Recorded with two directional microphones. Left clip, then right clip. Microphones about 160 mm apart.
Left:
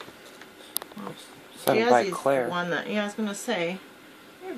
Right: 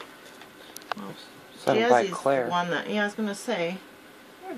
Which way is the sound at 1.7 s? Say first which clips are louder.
Even; centre (ahead or behind).